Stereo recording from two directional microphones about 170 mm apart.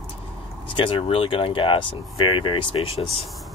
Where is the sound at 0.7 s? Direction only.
30° left (ahead or behind).